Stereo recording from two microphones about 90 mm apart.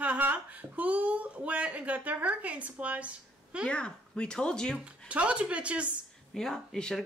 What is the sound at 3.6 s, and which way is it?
Speech, 10° left (ahead or behind).